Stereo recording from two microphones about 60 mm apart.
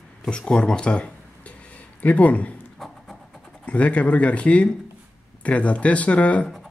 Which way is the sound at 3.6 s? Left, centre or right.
Left.